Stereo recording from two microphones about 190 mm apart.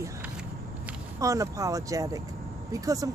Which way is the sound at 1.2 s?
15° right (ahead or behind).